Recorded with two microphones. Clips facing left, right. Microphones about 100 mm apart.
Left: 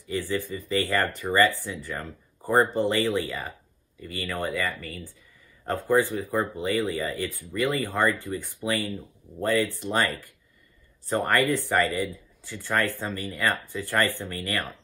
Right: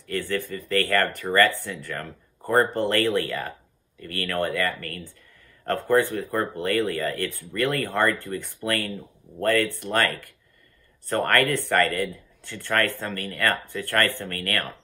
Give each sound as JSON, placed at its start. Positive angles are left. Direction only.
{"t": 0.0, "sound": "speech", "side_deg": 15}
{"t": 11.2, "sound": "speech", "side_deg": 15}